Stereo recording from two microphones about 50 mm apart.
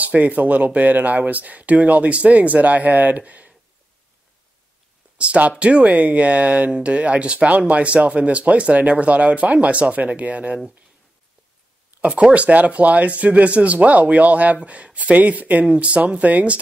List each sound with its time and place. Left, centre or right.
0.0 s speech: right
5.1 s speech: right
12.0 s speech: right